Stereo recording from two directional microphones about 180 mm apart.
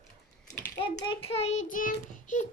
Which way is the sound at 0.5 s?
20° left (ahead or behind).